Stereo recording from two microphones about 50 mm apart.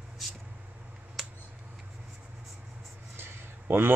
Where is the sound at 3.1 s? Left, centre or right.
Right.